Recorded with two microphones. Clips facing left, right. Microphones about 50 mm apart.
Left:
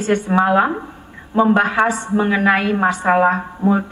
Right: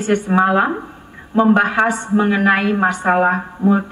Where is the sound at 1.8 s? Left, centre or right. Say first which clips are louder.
Even; centre.